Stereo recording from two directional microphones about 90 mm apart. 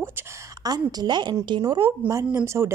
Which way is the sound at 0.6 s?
45° right (ahead or behind).